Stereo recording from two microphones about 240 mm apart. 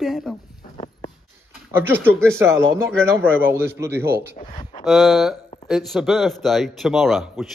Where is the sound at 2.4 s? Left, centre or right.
Centre.